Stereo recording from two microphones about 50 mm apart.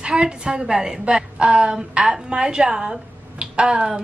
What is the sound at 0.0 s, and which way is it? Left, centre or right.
A woman's voice, centre.